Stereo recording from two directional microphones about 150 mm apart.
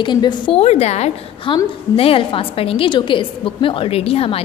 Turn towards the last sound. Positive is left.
turn(degrees=40)  # may be behind; listen again after turning